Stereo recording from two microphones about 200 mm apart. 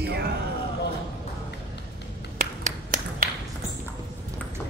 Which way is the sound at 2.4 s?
40° right (ahead or behind).